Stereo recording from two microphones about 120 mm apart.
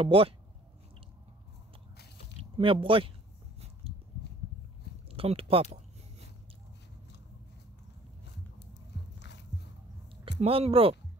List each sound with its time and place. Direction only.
0.0 s speech: 50° right (ahead or behind)
2.5 s speech: 45° right (ahead or behind)
5.1 s a sound: 55° right (ahead or behind)
10.2 s speech: 55° right (ahead or behind)